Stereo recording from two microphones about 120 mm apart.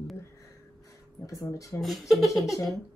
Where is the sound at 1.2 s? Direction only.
25° left (ahead or behind).